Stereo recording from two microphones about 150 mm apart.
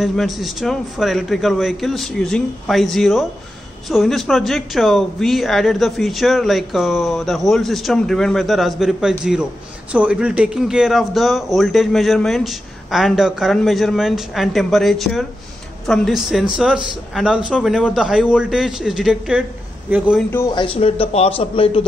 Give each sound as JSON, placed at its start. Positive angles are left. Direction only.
{"t": 0.0, "sound": "speech", "side_deg": 0}
{"t": 20.2, "sound": "speech", "side_deg": 15}
{"t": 20.5, "sound": "a man's voice", "side_deg": 40}